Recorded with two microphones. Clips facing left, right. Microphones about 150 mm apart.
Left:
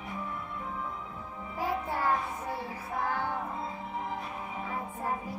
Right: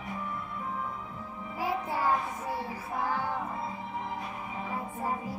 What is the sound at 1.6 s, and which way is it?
Music, 10° right (ahead or behind).